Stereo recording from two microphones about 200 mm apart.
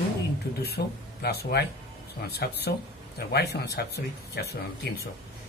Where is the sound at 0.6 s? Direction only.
55° left (ahead or behind).